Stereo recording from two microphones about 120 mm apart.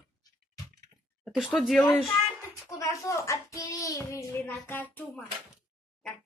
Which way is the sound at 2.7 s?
25° left (ahead or behind).